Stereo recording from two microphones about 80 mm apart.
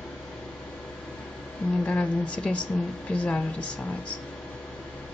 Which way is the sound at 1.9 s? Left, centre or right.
Centre.